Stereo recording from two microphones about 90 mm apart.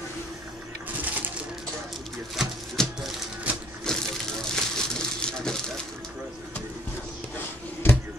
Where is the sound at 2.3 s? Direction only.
5° right (ahead or behind).